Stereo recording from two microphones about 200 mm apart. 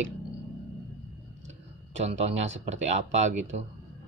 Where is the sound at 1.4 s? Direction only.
35° right (ahead or behind).